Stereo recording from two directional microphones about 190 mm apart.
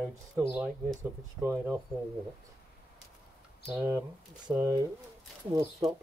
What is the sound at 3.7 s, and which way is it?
Speech, 15° right (ahead or behind).